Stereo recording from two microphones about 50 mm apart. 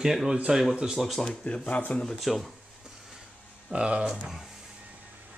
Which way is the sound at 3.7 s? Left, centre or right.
Centre.